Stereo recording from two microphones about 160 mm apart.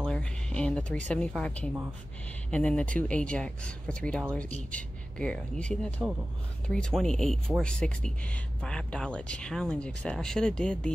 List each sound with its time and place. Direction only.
0.0 s speech: 5° left (ahead or behind)